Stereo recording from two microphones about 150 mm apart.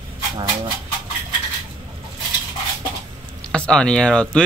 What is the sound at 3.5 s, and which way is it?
Speech, 5° left (ahead or behind).